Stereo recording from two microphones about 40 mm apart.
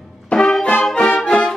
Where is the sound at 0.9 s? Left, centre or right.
Left.